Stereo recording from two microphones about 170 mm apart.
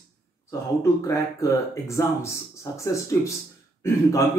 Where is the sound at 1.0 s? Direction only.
20° left (ahead or behind).